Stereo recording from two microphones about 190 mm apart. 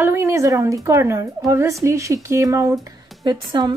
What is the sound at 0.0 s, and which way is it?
A woman's voice, 15° right (ahead or behind).